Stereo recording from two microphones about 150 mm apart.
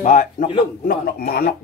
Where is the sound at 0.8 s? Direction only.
90° left.